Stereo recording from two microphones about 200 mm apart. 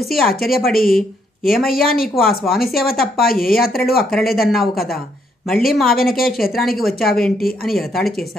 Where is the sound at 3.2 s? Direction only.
45° left (ahead or behind).